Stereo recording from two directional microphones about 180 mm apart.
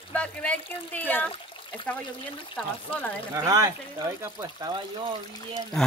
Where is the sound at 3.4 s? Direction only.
20° right (ahead or behind).